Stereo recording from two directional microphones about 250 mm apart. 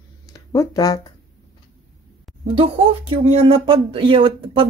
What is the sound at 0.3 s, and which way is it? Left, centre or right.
Speech, centre.